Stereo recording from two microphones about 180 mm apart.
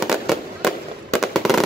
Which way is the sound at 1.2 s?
Centre (ahead or behind).